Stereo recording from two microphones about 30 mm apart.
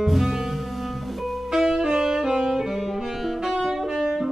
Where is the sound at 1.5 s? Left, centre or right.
Centre.